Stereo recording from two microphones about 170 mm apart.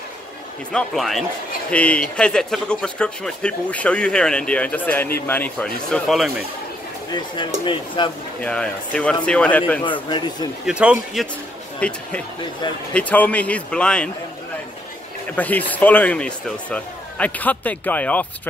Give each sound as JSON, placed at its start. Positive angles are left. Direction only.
{"t": 0.7, "sound": "speech", "side_deg": 5}
{"t": 7.2, "sound": "speech", "side_deg": 30}
{"t": 8.4, "sound": "speech", "side_deg": 5}
{"t": 9.8, "sound": "speech", "side_deg": 30}
{"t": 10.6, "sound": "speech", "side_deg": -5}
{"t": 11.8, "sound": "speech", "side_deg": 5}
{"t": 15.3, "sound": "speech", "side_deg": 10}